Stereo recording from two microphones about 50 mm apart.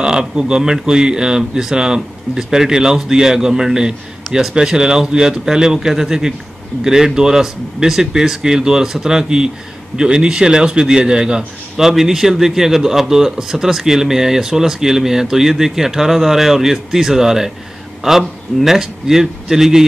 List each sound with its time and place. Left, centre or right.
0.0 s speech: centre